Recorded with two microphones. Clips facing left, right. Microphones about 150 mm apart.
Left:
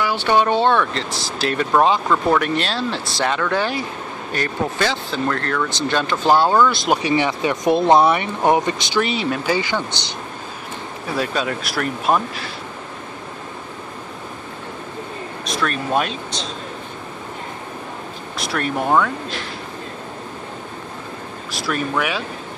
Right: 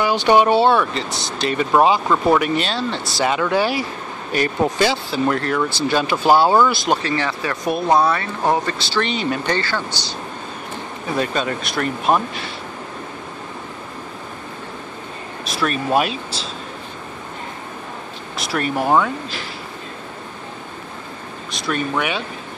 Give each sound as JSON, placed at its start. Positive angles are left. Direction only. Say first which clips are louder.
{"t": 0.0, "sound": "speech", "louder": "right 3 dB", "side_deg": -15}
{"t": 6.9, "sound": "speech", "louder": "left 2 dB", "side_deg": 15}
{"t": 9.0, "sound": "speech", "louder": "right 1 dB", "side_deg": 0}
{"t": 11.1, "sound": "speech", "louder": "right 1 dB", "side_deg": 0}
{"t": 15.4, "sound": "speech", "louder": "right 2 dB", "side_deg": -5}
{"t": 18.4, "sound": "speech", "louder": "right 1 dB", "side_deg": 0}
{"t": 21.5, "sound": "speech", "louder": "right 1 dB", "side_deg": 5}